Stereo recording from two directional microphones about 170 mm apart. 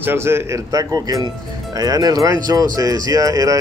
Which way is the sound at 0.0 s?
15° right (ahead or behind).